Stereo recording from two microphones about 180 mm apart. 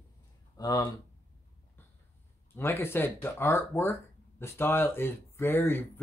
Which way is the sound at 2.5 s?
10° left (ahead or behind).